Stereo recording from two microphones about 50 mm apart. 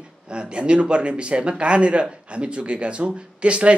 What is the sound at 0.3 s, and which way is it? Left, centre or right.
A man's voice, right.